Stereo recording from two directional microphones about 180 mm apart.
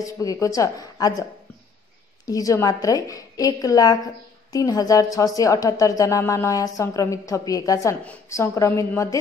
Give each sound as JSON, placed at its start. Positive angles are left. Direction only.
{"t": 0.0, "sound": "a woman's voice", "side_deg": 20}
{"t": 2.2, "sound": "a woman's voice", "side_deg": 20}